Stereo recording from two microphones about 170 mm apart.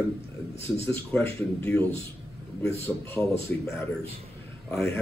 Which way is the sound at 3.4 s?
15° left (ahead or behind).